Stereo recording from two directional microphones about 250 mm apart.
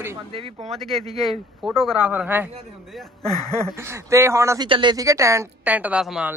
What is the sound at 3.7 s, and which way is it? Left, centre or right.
Speech, centre.